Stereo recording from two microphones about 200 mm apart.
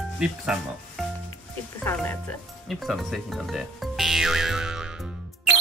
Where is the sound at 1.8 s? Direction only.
10° left (ahead or behind).